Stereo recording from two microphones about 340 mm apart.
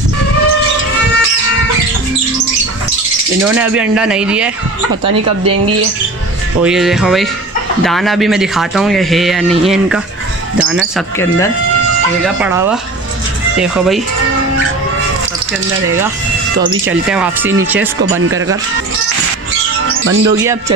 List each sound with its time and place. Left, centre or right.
3.4 s speech: centre
6.6 s speech: centre
10.6 s speech: centre
12.4 s speech: centre
16.8 s speech: centre
19.9 s music: right